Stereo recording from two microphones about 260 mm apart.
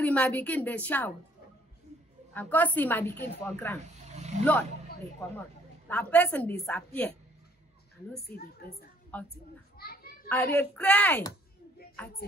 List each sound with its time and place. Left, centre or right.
0.0 s a woman's voice: centre
2.3 s a woman's voice: centre
4.1 s roaring cats: right
5.9 s a woman's voice: centre
9.1 s a woman's voice: centre
9.8 s children playing: left
10.2 s a woman's voice: centre